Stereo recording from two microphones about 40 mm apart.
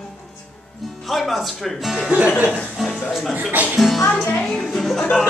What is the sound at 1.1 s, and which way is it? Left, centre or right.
Speech, centre.